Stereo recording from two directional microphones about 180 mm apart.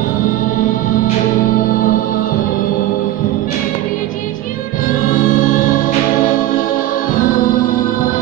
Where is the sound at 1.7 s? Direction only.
50° left (ahead or behind).